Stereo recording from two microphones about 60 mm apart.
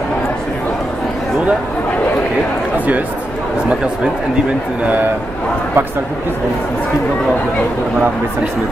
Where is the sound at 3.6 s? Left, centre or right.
Centre.